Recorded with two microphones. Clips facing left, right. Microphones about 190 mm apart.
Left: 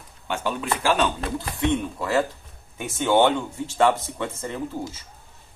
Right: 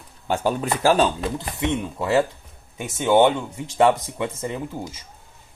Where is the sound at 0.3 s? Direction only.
40° right (ahead or behind).